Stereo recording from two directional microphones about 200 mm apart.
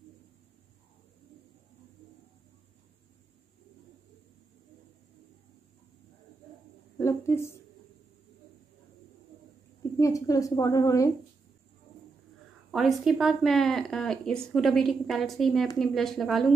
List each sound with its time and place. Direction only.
7.0 s a sound: 15° left (ahead or behind)
9.9 s a woman's voice: 15° left (ahead or behind)
12.7 s speech: centre (ahead or behind)